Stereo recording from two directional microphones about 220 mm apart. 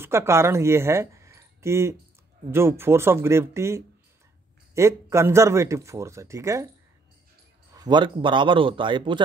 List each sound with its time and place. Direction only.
0.0 s speech: 10° right (ahead or behind)
7.7 s a man's voice: 20° right (ahead or behind)